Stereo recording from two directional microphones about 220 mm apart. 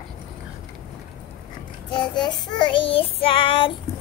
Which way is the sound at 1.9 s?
20° left (ahead or behind).